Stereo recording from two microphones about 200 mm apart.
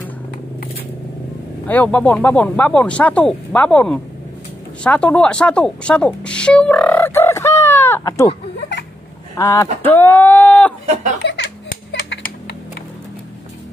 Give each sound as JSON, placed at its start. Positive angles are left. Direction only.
{"t": 1.7, "sound": "speech", "side_deg": 5}
{"t": 9.4, "sound": "speech", "side_deg": 15}
{"t": 11.2, "sound": "a sound", "side_deg": 55}